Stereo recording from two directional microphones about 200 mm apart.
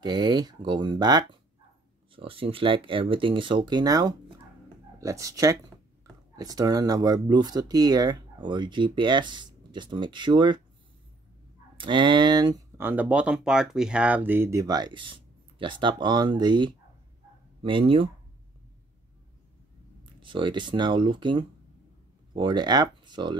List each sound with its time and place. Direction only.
0.0 s speech: 20° right (ahead or behind)
11.7 s speech: 25° right (ahead or behind)
20.2 s speech: 25° right (ahead or behind)